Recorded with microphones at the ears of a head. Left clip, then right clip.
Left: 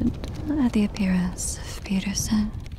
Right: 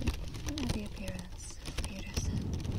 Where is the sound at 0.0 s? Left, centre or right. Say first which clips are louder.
Left 11 dB; left.